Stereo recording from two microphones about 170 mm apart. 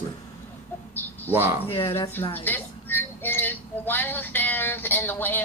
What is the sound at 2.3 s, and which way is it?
Music, 10° left (ahead or behind).